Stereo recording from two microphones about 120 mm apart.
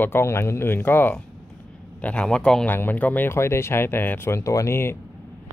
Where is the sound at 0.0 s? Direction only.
20° left (ahead or behind).